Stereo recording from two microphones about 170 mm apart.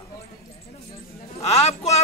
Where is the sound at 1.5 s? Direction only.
40° left (ahead or behind).